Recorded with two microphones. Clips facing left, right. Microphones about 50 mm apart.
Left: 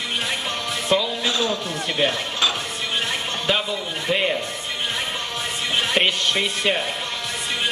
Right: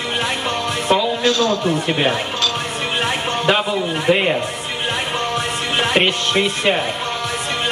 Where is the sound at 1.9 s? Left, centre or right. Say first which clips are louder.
Right 1 dB; right.